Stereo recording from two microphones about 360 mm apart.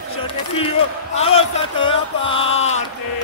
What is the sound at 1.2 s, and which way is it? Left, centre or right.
Music, centre.